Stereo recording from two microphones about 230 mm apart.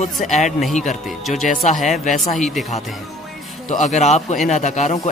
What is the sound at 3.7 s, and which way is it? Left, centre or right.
A man's voice, left.